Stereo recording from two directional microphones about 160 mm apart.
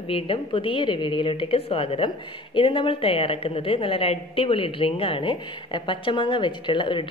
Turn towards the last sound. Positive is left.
turn(degrees=30)  # may be behind; listen again after turning